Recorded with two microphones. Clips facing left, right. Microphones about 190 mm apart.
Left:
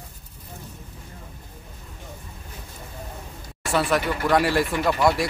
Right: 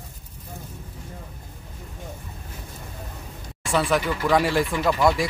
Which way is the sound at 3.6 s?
Centre (ahead or behind).